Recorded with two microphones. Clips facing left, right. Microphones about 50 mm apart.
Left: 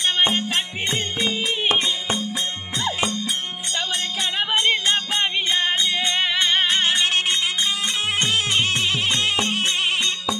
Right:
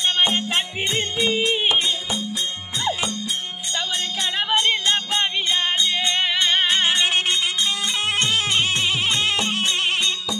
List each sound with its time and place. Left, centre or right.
0.3 s music: centre
1.2 s music: centre
3.7 s music: centre